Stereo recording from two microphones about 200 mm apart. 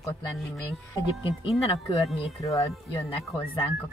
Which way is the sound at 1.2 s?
25° left (ahead or behind).